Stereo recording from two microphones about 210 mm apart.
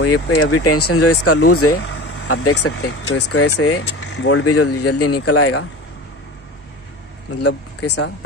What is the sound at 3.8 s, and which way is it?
Speech, 65° left (ahead or behind).